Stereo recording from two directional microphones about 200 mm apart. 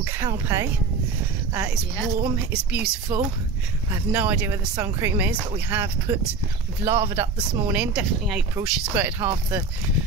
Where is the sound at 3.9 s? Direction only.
10° right (ahead or behind).